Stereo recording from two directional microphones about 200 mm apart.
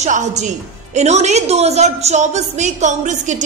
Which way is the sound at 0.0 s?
35° right (ahead or behind).